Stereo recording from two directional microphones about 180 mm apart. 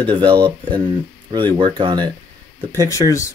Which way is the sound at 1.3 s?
25° right (ahead or behind).